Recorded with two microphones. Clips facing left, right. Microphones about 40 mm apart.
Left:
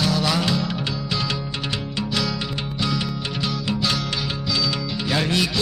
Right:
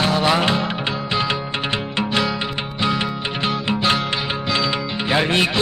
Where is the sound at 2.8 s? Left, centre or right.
Right.